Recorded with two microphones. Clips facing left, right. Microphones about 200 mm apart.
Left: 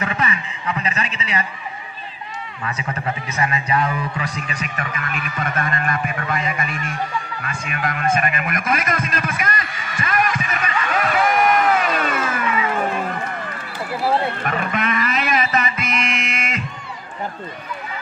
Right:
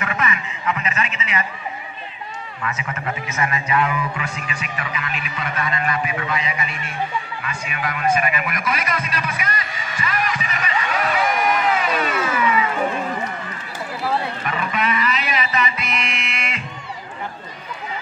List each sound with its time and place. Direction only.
0.0 s a sound: 30° left (ahead or behind)
2.6 s a man's voice: 30° left (ahead or behind); by 10.7 s 50° left (ahead or behind)
11.2 s crowd: 50° left (ahead or behind)
14.4 s music: 50° left (ahead or behind)